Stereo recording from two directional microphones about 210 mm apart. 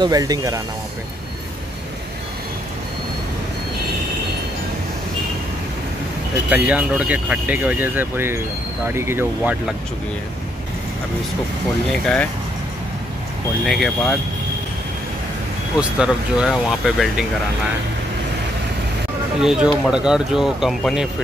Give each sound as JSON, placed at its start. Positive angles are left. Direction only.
{"t": 0.0, "sound": "speech", "side_deg": -15}
{"t": 6.5, "sound": "speech", "side_deg": -5}
{"t": 9.4, "sound": "speech", "side_deg": 0}
{"t": 11.9, "sound": "speech", "side_deg": 5}
{"t": 13.7, "sound": "speech", "side_deg": 0}
{"t": 15.8, "sound": "speech", "side_deg": -5}
{"t": 19.4, "sound": "speech", "side_deg": -5}